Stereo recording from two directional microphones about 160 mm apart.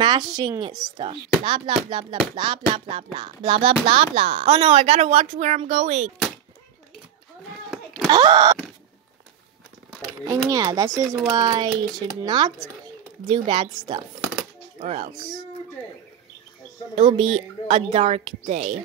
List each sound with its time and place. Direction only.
0.0 s speech: 25° right (ahead or behind); by 6.1 s 45° right (ahead or behind)
7.7 s a sound: centre (ahead or behind)
8.1 s speech: 25° right (ahead or behind)
10.2 s speech: 20° right (ahead or behind)
14.8 s speech: 40° right (ahead or behind)
16.9 s speech: 35° right (ahead or behind)